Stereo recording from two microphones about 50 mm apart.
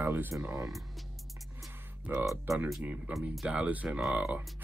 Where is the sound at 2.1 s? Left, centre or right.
Right.